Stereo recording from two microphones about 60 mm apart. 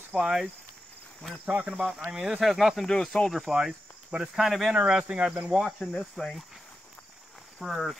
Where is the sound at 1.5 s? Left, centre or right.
Centre.